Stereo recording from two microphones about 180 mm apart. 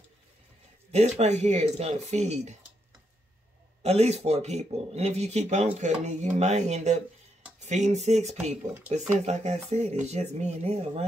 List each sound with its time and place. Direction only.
0.9 s speech: 40° right (ahead or behind)
3.8 s speech: 35° right (ahead or behind)